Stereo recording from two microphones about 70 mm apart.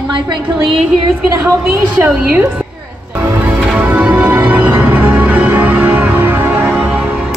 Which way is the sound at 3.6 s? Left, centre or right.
Centre.